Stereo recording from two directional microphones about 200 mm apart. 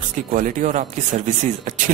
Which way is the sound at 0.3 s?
40° right (ahead or behind).